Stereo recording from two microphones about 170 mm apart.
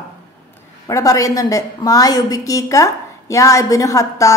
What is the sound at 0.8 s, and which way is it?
A woman's voice, 20° left (ahead or behind).